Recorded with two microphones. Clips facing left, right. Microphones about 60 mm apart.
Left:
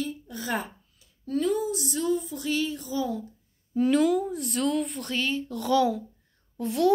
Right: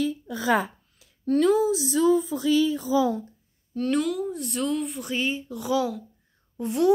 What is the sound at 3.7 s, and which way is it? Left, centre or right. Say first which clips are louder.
A woman's voice: left 3 dB; centre.